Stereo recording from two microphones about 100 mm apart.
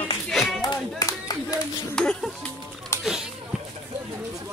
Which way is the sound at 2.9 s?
25° left (ahead or behind).